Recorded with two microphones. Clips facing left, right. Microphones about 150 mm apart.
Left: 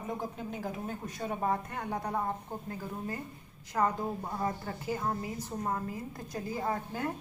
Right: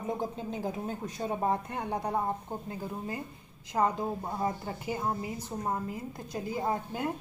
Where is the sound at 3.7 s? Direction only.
20° right (ahead or behind).